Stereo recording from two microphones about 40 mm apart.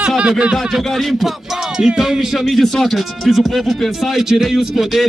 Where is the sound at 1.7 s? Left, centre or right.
Centre.